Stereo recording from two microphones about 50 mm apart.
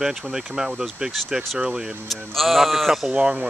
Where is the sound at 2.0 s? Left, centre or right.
Centre.